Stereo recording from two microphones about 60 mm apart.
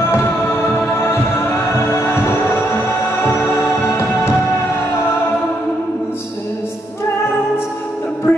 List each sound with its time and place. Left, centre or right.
0.1 s music: left
8.3 s music: left